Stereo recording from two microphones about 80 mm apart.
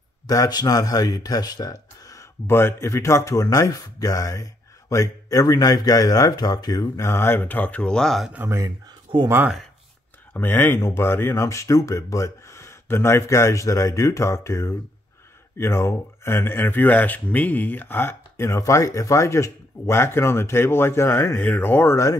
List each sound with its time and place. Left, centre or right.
0.3 s speech: left
2.4 s speech: left
7.0 s speech: left; by 8.3 s centre
8.5 s speech: right
9.1 s speech: right
10.3 s speech: left
11.4 s speech: left